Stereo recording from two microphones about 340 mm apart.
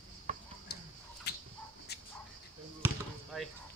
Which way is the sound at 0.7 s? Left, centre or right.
Left.